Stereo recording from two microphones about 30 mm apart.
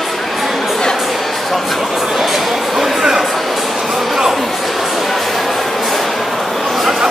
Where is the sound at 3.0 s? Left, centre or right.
Centre.